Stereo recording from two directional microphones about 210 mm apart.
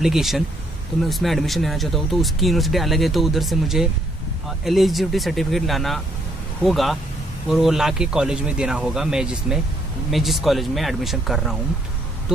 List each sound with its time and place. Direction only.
0.0 s speech: centre (ahead or behind)